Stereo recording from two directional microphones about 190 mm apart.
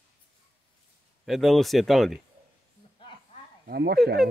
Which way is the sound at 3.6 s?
55° right (ahead or behind).